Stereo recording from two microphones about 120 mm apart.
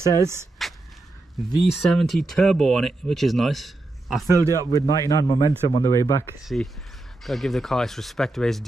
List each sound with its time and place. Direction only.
0.0 s a man's voice: 30° left (ahead or behind)
0.6 s a sound: centre (ahead or behind)
1.6 s speech: centre (ahead or behind)
4.3 s speech: 25° right (ahead or behind)
4.7 s a man's voice: 30° left (ahead or behind)
6.4 s speech: centre (ahead or behind)